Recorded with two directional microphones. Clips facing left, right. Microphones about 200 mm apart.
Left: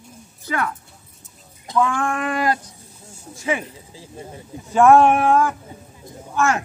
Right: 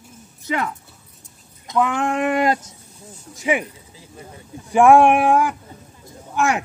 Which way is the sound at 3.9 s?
25° left (ahead or behind).